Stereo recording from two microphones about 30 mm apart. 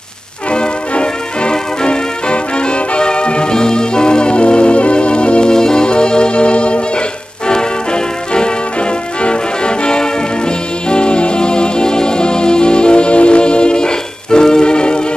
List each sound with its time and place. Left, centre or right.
0.5 s music: left
5.5 s music: left